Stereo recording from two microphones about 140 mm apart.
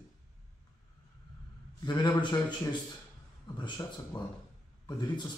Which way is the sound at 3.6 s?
30° left (ahead or behind).